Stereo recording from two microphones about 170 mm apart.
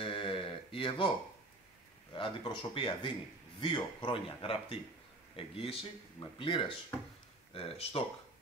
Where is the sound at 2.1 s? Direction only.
30° left (ahead or behind).